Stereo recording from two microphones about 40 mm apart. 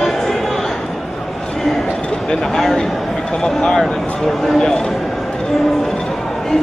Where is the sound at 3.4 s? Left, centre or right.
Centre.